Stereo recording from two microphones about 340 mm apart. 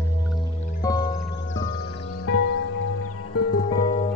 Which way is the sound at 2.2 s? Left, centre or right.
Left.